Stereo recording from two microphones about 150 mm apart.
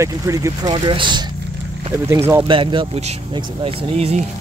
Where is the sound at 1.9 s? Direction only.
20° left (ahead or behind).